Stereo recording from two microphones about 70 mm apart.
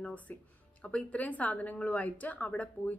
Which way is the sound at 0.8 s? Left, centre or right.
Left.